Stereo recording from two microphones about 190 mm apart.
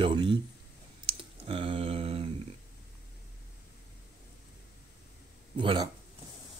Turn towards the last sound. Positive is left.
turn(degrees=-25)  # may be behind; listen again after turning